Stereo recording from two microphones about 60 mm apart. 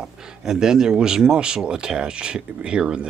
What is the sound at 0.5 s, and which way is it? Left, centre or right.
Speech, centre.